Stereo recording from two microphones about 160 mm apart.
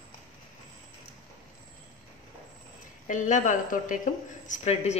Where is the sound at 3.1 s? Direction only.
50° left (ahead or behind).